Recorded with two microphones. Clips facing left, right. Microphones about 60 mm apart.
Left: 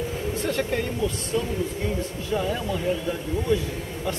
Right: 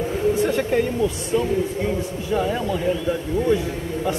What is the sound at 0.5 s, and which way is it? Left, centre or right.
Speech, centre.